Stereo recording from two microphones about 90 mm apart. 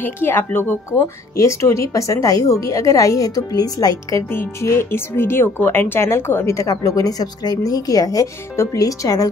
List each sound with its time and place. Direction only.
0.0 s speech: 25° left (ahead or behind); by 4.2 s 45° left (ahead or behind)
4.3 s speech: 30° left (ahead or behind)